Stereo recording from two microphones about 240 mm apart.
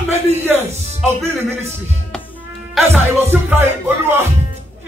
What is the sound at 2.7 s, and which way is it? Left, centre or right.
Music, centre.